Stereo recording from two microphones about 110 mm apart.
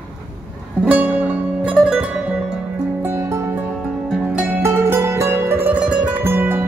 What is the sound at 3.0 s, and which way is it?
Music, 20° right (ahead or behind).